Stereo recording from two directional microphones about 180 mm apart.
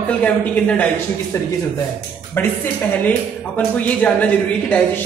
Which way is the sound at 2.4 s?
10° left (ahead or behind).